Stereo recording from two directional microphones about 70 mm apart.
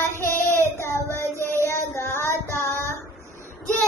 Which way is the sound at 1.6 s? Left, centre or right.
Left.